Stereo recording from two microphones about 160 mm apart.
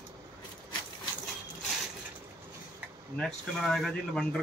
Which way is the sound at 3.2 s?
Centre (ahead or behind).